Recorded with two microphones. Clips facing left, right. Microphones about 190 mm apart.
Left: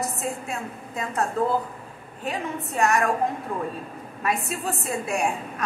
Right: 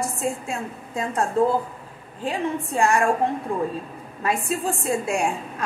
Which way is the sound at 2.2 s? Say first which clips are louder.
Right 4 dB; 30° right (ahead or behind).